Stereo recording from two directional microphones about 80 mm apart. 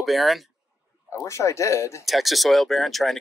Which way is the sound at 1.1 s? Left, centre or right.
Left.